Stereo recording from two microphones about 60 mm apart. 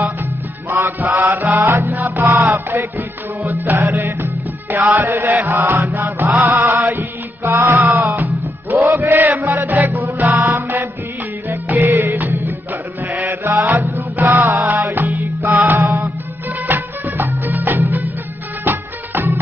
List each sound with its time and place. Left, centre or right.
0.7 s music: right
3.0 s music: right
5.3 s chant: right
8.1 s music: right